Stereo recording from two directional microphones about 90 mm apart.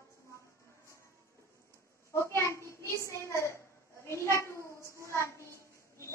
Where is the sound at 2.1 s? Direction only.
30° left (ahead or behind).